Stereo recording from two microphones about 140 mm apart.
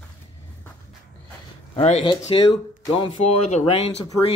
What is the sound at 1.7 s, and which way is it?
Speech, 45° left (ahead or behind).